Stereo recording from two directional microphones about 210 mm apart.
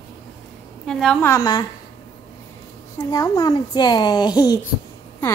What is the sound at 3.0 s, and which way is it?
A child's voice, 15° left (ahead or behind).